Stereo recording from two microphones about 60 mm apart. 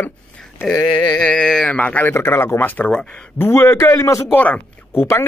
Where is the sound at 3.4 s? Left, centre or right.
Left.